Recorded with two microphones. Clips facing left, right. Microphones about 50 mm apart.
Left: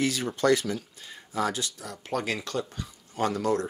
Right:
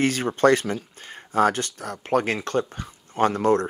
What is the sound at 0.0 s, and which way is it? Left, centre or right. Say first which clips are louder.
Speech: right 6 dB; right.